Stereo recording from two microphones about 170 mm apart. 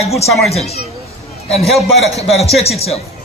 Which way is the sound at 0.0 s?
40° left (ahead or behind).